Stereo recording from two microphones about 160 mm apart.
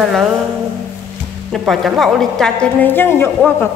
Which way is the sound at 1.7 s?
Centre (ahead or behind).